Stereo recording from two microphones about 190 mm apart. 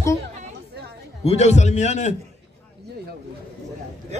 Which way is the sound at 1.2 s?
35° left (ahead or behind).